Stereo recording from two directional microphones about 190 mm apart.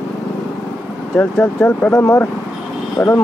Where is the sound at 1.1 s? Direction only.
5° left (ahead or behind).